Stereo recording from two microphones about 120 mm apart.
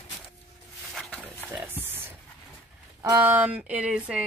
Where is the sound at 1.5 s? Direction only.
20° right (ahead or behind).